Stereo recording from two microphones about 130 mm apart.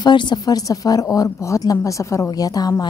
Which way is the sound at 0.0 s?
35° left (ahead or behind).